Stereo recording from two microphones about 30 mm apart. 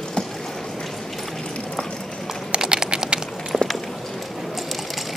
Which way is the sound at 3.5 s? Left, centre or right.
Centre.